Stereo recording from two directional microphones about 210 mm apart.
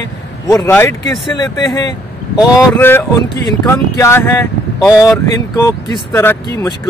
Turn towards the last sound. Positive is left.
turn(degrees=10)  # may be behind; listen again after turning